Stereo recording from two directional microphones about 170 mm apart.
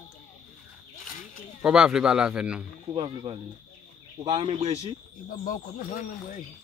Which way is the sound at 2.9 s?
25° right (ahead or behind).